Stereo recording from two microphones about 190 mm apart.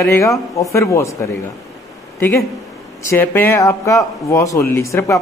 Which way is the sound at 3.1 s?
10° left (ahead or behind).